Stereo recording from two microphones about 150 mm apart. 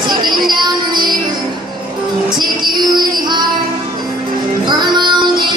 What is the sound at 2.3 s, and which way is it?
Music, 30° right (ahead or behind).